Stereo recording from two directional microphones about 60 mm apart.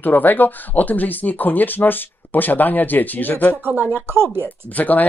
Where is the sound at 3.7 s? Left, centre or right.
Right.